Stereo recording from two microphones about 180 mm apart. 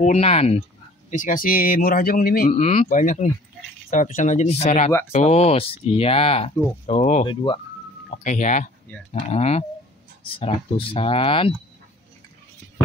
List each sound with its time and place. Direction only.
0.0 s speech: 35° left (ahead or behind)
1.1 s speech: 50° left (ahead or behind)
2.5 s speech: 35° left (ahead or behind)
2.9 s speech: 45° left (ahead or behind)